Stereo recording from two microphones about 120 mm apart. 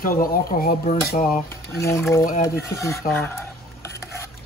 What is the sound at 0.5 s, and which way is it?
Speech, 90° left.